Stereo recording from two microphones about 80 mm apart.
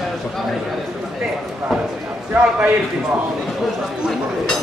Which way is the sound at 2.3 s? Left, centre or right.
Centre.